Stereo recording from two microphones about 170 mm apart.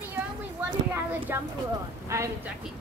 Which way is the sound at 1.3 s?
15° right (ahead or behind).